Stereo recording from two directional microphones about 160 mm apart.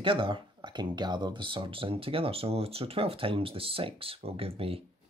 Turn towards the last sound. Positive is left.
turn(degrees=-35)  # may be behind; listen again after turning